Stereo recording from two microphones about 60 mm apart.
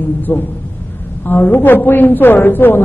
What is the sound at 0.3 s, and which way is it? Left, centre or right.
A woman's voice, left.